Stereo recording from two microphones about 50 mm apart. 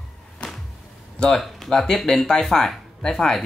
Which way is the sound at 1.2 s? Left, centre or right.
Centre.